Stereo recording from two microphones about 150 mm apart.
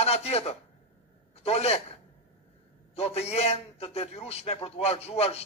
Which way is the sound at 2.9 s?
45° left (ahead or behind).